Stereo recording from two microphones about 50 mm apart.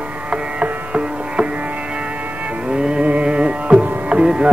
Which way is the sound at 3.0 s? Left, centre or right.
Right.